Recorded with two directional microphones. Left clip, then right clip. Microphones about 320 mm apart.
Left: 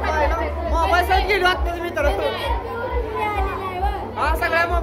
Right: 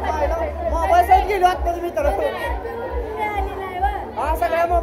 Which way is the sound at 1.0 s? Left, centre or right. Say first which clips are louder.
Right 3 dB; left.